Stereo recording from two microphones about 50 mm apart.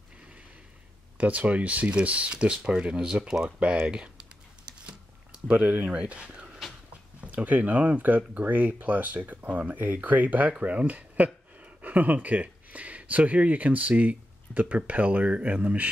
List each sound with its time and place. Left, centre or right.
1.1 s speech: right
5.5 s speech: right
5.9 s speech: right